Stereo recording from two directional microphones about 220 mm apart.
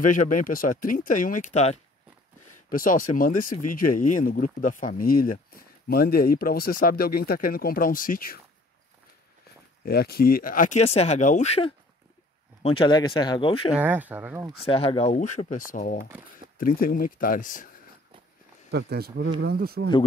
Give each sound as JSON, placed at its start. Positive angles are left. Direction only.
{"t": 0.0, "sound": "speech", "side_deg": 35}
{"t": 9.8, "sound": "speech", "side_deg": 45}
{"t": 13.7, "sound": "speech", "side_deg": -5}
{"t": 14.7, "sound": "speech", "side_deg": 25}
{"t": 18.7, "sound": "speech", "side_deg": -50}